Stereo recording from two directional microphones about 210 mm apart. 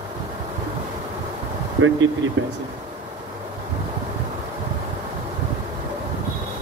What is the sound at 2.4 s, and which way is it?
Speech, 65° right (ahead or behind).